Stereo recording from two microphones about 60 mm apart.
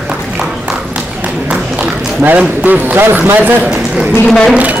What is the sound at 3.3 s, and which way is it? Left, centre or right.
Speech, right.